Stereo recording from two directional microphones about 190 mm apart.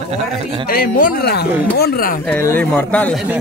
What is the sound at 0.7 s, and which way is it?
Speech, 50° left (ahead or behind).